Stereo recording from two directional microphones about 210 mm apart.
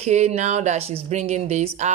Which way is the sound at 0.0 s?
30° right (ahead or behind).